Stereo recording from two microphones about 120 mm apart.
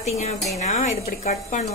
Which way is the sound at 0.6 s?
85° left.